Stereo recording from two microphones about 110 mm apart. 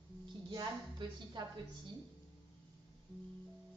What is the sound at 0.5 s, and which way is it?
Speech, 45° right (ahead or behind).